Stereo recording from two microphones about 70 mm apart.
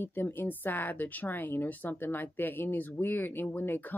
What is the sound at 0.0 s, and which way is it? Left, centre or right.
Speech, left.